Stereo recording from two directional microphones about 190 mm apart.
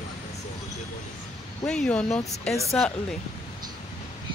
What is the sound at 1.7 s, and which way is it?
Speech, 5° left (ahead or behind).